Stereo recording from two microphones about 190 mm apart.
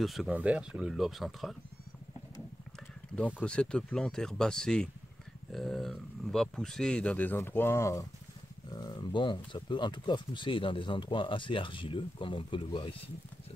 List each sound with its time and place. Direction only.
0.0 s speech: centre (ahead or behind)
3.3 s speech: 5° left (ahead or behind); by 12.9 s 25° left (ahead or behind)